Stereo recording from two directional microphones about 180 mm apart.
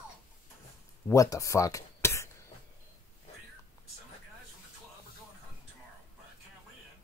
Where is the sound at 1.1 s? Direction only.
20° left (ahead or behind).